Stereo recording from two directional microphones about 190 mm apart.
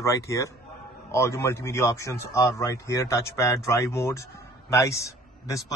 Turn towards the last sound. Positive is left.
turn(degrees=15)  # may be behind; listen again after turning